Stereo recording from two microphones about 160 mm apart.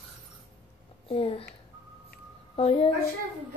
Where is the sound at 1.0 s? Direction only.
35° left (ahead or behind).